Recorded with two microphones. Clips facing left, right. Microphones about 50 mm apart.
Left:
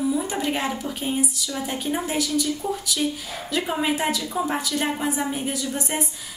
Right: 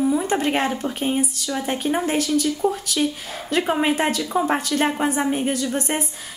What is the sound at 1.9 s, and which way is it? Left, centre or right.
A woman's voice, right.